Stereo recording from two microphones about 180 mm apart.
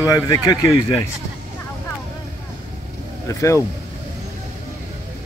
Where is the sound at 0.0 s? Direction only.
20° left (ahead or behind).